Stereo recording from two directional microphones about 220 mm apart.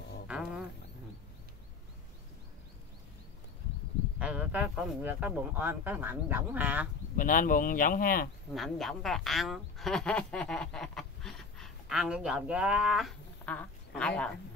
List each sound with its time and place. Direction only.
0.3 s a sound: 5° right (ahead or behind)
4.2 s speech: 5° right (ahead or behind)
7.2 s speech: 40° left (ahead or behind)
8.5 s speech: centre (ahead or behind)